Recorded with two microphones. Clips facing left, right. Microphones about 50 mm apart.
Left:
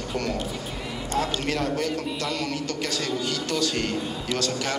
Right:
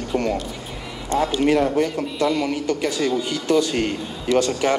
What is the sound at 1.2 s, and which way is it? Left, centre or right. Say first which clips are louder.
A man's voice: right 9 dB; right.